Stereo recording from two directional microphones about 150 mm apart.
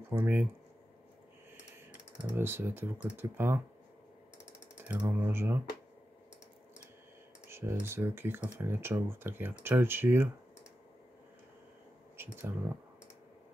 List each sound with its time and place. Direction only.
0.1 s speech: 15° right (ahead or behind)
1.9 s speech: 15° right (ahead or behind)
4.8 s speech: 10° right (ahead or behind)
7.4 s speech: 15° right (ahead or behind)
12.2 s speech: 15° right (ahead or behind)